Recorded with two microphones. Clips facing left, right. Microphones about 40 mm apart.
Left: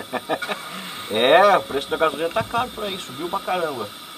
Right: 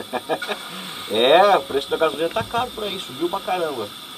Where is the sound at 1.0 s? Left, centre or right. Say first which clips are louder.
Even; centre.